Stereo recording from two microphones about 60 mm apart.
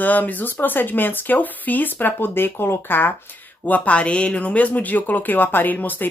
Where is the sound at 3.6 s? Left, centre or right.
Left.